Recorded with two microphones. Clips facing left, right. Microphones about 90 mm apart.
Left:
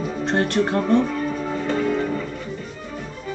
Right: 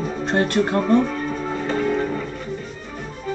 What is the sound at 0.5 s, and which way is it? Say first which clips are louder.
Music: right 1 dB; 50° right (ahead or behind).